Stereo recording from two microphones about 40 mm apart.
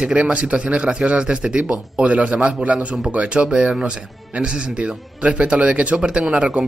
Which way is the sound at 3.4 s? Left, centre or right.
Centre.